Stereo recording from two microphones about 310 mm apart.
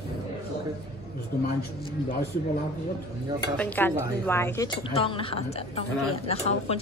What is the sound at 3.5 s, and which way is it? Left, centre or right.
A woman's voice, centre.